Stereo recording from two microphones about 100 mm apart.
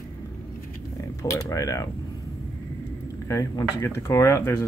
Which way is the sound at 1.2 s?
35° left (ahead or behind).